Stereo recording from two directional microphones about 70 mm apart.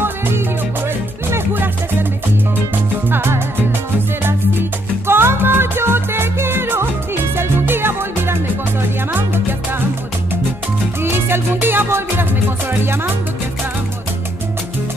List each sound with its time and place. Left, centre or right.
1.3 s music: right
2.7 s music: right
11.0 s music: right